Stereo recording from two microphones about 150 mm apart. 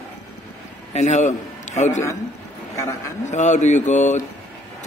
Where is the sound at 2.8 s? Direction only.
20° left (ahead or behind).